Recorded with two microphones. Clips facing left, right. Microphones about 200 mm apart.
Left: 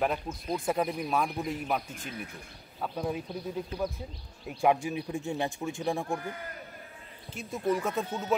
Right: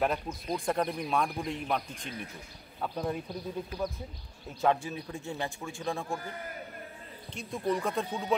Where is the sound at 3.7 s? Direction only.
30° left (ahead or behind).